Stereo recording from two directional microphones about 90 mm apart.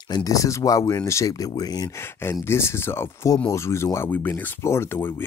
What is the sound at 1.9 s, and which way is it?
Speech, 25° left (ahead or behind).